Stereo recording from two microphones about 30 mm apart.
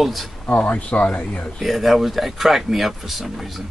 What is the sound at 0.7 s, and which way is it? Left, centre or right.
Speech, left.